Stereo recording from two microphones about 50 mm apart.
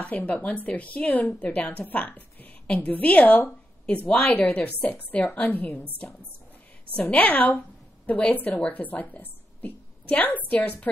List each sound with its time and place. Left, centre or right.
0.0 s a woman's voice: left
7.0 s a woman's voice: left